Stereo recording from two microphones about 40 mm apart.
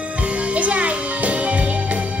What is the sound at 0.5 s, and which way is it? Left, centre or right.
Music, right.